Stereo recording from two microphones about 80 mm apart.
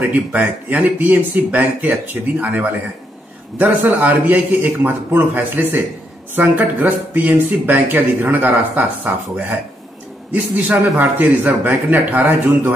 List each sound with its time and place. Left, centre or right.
0.0 s speech: right